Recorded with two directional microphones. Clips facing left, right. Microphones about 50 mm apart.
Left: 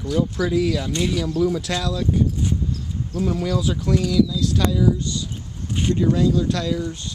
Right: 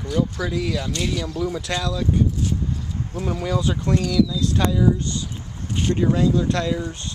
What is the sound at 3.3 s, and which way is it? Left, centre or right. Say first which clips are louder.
Speech: right 3 dB; centre.